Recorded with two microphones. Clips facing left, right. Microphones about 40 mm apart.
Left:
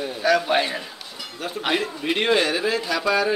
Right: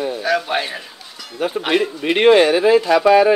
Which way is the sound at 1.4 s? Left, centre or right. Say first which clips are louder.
Right 6 dB; right.